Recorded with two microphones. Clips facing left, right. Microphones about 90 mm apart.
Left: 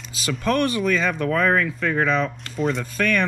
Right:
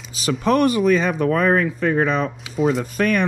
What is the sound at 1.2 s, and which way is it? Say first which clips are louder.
Speech: right 3 dB; 35° right (ahead or behind).